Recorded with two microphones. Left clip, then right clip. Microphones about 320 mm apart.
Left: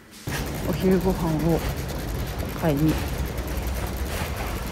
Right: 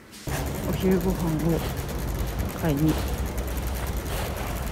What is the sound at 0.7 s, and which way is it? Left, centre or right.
Vehicle, centre.